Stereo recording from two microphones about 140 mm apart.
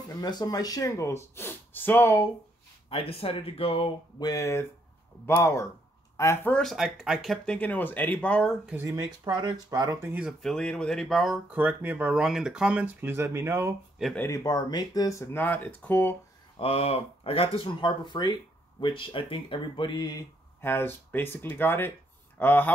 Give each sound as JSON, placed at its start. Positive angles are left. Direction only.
{"t": 0.2, "sound": "speech", "side_deg": 30}
{"t": 2.9, "sound": "speech", "side_deg": 40}
{"t": 4.3, "sound": "speech", "side_deg": 20}
{"t": 6.6, "sound": "speech", "side_deg": 0}
{"t": 8.6, "sound": "speech", "side_deg": -15}
{"t": 8.9, "sound": "speech", "side_deg": -25}
{"t": 10.4, "sound": "speech", "side_deg": 5}
{"t": 11.5, "sound": "speech", "side_deg": -15}
{"t": 14.1, "sound": "speech", "side_deg": 15}
{"t": 14.4, "sound": "speech", "side_deg": 30}
{"t": 16.5, "sound": "speech", "side_deg": 40}
{"t": 20.6, "sound": "speech", "side_deg": 15}